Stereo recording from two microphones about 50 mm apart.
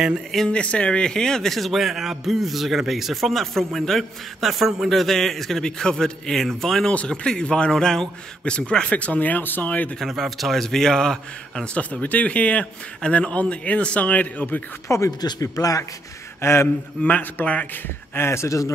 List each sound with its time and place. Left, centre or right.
0.5 s a man's voice: left
9.7 s a man's voice: left
10.0 s speech: centre
11.7 s a man's voice: left
14.9 s a man's voice: left
16.3 s speech: left
17.1 s speech: left
17.8 s speech: left